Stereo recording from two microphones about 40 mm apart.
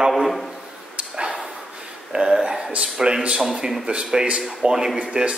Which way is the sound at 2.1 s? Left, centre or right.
Centre.